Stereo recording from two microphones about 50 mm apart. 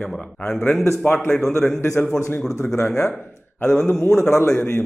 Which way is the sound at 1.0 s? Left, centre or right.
Left.